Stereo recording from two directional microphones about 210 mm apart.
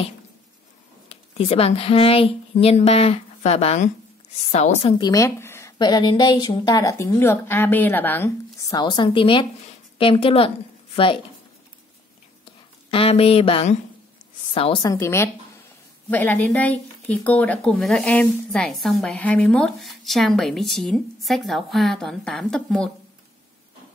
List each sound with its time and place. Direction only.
1.0 s a woman's voice: 30° left (ahead or behind)
12.9 s a woman's voice: 25° left (ahead or behind); by 22.8 s 5° left (ahead or behind)